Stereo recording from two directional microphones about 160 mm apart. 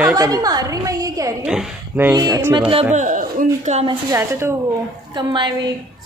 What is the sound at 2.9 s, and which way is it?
Speech, 50° right (ahead or behind).